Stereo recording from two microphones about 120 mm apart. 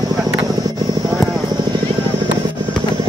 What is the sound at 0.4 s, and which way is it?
Vehicle, 35° right (ahead or behind).